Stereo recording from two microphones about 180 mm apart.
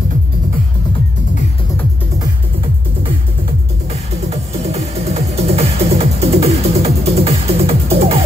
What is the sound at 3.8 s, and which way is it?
Music, 35° right (ahead or behind).